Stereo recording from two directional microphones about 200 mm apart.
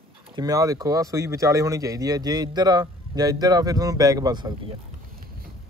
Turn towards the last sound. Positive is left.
turn(degrees=-20)  # may be behind; listen again after turning